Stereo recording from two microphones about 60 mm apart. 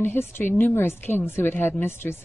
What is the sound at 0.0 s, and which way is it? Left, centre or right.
Speech, left.